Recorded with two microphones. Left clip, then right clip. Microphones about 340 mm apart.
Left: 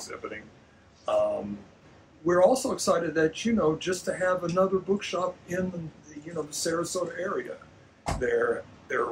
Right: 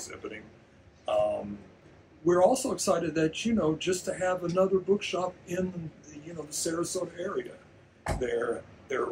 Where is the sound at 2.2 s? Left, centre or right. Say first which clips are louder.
Left 2 dB; centre.